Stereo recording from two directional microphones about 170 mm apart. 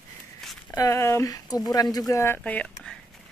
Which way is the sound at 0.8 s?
15° left (ahead or behind).